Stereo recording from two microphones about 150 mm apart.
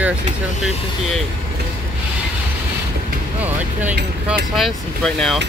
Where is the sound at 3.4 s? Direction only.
10° right (ahead or behind).